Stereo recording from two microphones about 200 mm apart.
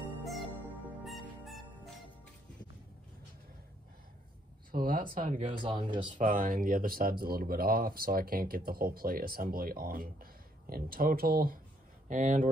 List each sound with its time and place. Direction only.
0.2 s music: centre (ahead or behind)
4.6 s speech: 45° right (ahead or behind)
5.5 s speech: 25° right (ahead or behind)
6.1 s speech: 40° right (ahead or behind)